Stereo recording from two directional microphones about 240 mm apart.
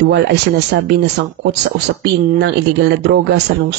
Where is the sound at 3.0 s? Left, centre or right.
Right.